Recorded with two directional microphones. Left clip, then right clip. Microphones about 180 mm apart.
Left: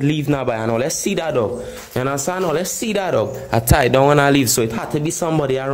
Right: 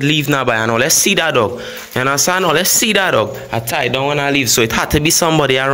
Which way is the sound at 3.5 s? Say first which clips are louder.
Left 2 dB; 35° left (ahead or behind).